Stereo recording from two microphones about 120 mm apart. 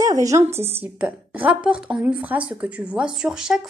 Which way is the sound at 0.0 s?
30° right (ahead or behind).